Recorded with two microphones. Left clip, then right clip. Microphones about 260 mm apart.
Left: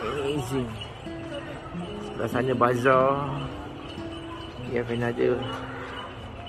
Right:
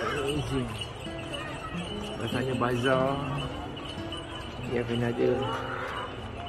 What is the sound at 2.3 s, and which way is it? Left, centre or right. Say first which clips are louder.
Speech: left 7 dB; left.